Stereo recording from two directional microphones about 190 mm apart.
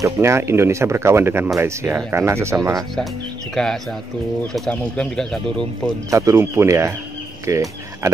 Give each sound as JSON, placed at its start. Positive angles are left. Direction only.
{"t": 0.0, "sound": "speech", "side_deg": -15}
{"t": 4.6, "sound": "speech", "side_deg": 5}
{"t": 6.0, "sound": "speech", "side_deg": -15}